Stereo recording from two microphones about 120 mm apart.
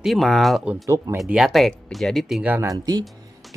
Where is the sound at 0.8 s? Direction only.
30° right (ahead or behind).